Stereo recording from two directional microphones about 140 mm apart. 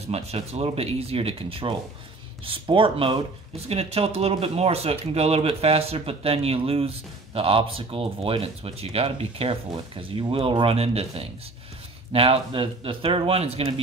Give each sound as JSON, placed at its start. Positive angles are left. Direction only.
{"t": 0.0, "sound": "speech", "side_deg": -50}